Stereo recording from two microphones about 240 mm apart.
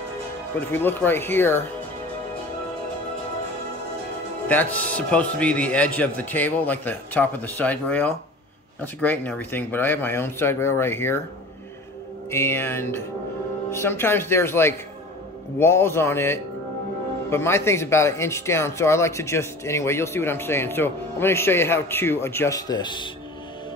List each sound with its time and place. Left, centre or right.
0.6 s speech: centre
4.5 s speech: centre
12.3 s speech: centre